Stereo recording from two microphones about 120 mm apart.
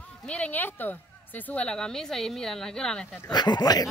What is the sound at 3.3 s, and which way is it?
Speech, 35° left (ahead or behind).